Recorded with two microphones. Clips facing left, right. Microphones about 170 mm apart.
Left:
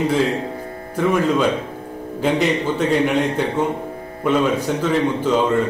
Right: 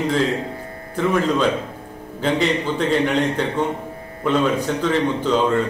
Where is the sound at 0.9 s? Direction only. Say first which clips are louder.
Left 1 dB; 10° left (ahead or behind).